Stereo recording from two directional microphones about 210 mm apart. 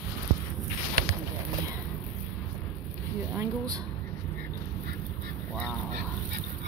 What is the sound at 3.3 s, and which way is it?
Speech, 20° right (ahead or behind).